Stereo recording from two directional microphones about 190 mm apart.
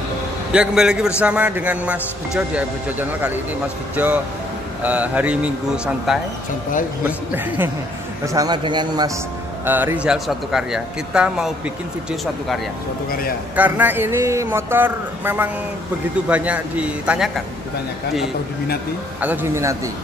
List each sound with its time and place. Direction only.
0.5 s speech: 5° right (ahead or behind)
8.3 s speech: 20° right (ahead or behind)
9.7 s speech: 10° right (ahead or behind)
13.6 s speech: 10° right (ahead or behind)
19.2 s speech: 10° right (ahead or behind)